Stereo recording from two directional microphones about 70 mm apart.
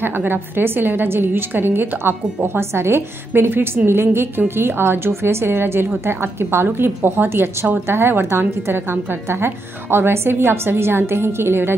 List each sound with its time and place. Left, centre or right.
0.0 s a woman's voice: right